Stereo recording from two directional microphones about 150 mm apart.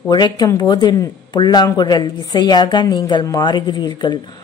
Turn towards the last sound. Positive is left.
turn(degrees=30)  # may be behind; listen again after turning